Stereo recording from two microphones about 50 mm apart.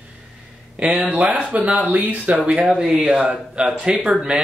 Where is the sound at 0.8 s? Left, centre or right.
Right.